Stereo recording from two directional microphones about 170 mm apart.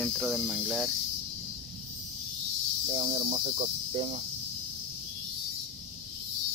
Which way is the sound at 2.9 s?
30° right (ahead or behind).